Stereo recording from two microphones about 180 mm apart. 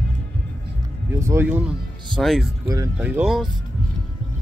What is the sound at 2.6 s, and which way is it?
Speech, 20° right (ahead or behind).